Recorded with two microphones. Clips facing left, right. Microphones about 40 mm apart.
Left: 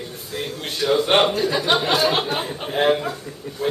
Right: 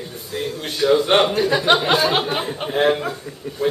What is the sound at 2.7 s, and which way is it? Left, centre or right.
A man's voice, centre.